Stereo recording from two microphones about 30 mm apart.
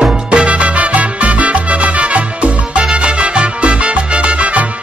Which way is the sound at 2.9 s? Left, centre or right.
Right.